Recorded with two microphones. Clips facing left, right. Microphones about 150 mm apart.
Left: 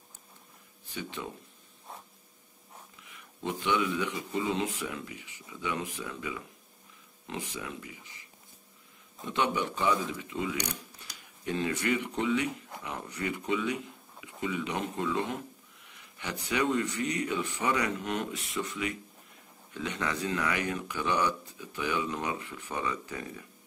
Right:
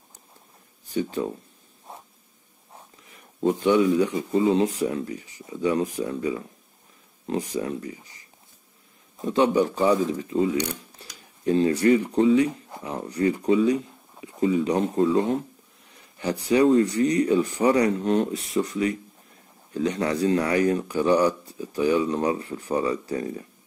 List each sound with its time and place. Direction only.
0.8 s speech: 40° right (ahead or behind)
3.0 s speech: 40° right (ahead or behind)